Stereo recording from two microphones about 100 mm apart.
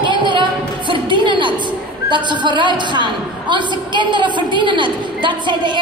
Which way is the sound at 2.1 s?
50° right (ahead or behind).